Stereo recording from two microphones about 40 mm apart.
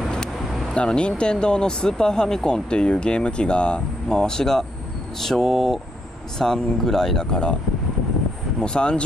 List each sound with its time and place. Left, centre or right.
0.7 s speech: left; by 7.2 s centre
8.5 s speech: left